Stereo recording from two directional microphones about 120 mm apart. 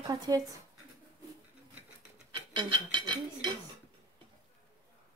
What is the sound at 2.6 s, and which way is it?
Speech, 40° right (ahead or behind).